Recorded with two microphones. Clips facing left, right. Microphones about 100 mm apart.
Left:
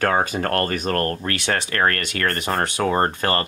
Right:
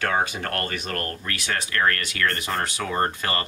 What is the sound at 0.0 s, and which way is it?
Speech, 45° left (ahead or behind).